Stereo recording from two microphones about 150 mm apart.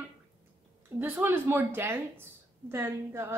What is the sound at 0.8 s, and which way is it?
A woman's voice, 15° right (ahead or behind).